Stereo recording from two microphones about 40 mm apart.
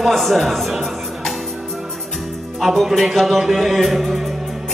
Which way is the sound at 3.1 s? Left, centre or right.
Centre.